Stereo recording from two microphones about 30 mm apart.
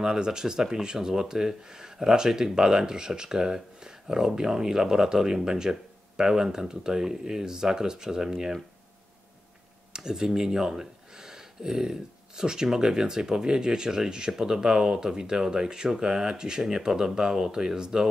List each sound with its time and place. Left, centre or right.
0.0 s speech: right
9.9 s speech: centre